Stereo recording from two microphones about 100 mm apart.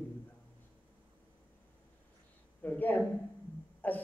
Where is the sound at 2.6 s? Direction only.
15° left (ahead or behind).